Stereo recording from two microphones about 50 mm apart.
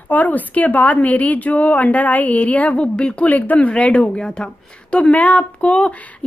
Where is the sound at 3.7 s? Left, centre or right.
Left.